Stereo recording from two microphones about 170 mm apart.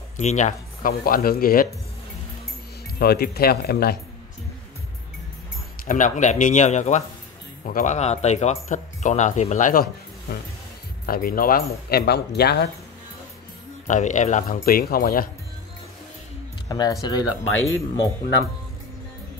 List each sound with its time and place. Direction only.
0.2 s speech: 45° left (ahead or behind)
3.0 s speech: 65° left (ahead or behind)
5.9 s speech: 50° left (ahead or behind)
11.1 s speech: 60° left (ahead or behind)
13.8 s speech: 45° left (ahead or behind)
16.6 s speech: 20° left (ahead or behind)